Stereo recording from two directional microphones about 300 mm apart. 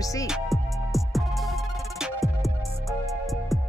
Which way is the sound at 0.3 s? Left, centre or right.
Centre.